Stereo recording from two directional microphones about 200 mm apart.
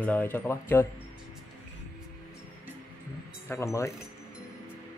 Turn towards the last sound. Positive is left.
turn(degrees=15)  # may be behind; listen again after turning